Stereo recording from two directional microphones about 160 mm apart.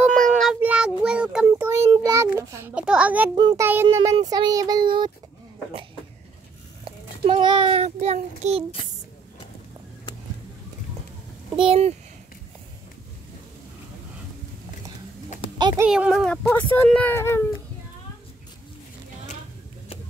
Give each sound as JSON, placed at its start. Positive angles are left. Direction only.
{"t": 0.0, "sound": "meow", "side_deg": 5}
{"t": 0.6, "sound": "child singing", "side_deg": -5}
{"t": 2.3, "sound": "a sound", "side_deg": -15}
{"t": 2.8, "sound": "a child's voice", "side_deg": -5}
{"t": 3.3, "sound": "speech", "side_deg": -25}
{"t": 6.8, "sound": "a child's voice", "side_deg": -30}
{"t": 11.5, "sound": "speech", "side_deg": -35}
{"t": 15.9, "sound": "a child's voice", "side_deg": -5}